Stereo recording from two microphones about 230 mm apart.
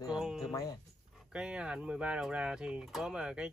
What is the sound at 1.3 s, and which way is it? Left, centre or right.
Speech, centre.